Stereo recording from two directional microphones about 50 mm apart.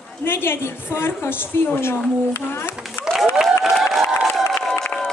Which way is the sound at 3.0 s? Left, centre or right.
Left.